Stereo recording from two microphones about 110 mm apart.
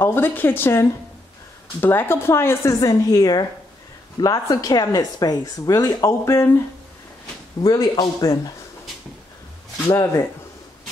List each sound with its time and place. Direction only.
0.0 s speech: 20° left (ahead or behind)
7.6 s speech: 35° left (ahead or behind)
9.8 s speech: 30° left (ahead or behind)